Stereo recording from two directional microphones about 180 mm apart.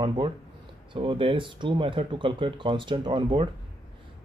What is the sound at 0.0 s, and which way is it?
Speech, 25° right (ahead or behind).